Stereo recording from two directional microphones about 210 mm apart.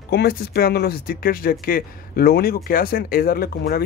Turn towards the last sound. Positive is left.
turn(degrees=45)  # may be behind; listen again after turning